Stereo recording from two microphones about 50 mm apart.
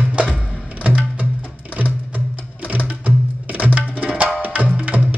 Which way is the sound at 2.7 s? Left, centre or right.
Right.